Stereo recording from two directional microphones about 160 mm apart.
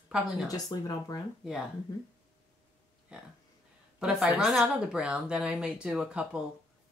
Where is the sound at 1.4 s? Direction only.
Centre (ahead or behind).